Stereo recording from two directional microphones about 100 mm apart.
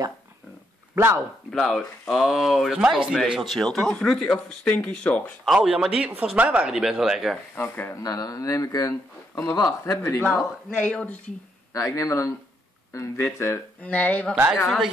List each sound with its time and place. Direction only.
0.9 s speech: 25° right (ahead or behind)
1.5 s speech: 5° left (ahead or behind)
5.4 s speech: 5° right (ahead or behind)
7.5 s speech: 20° left (ahead or behind)
8.0 s speech: 35° left (ahead or behind)
10.8 s speech: 10° left (ahead or behind)
11.7 s speech: 30° left (ahead or behind); by 14.3 s 15° left (ahead or behind)
14.3 s a woman's voice: 10° right (ahead or behind)